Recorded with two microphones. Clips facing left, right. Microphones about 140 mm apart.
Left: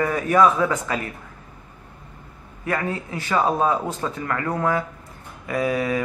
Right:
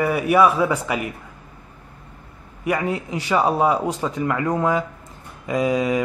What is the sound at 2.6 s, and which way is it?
Speech, 15° right (ahead or behind).